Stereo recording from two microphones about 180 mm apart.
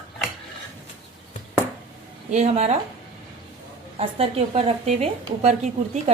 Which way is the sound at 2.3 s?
35° right (ahead or behind).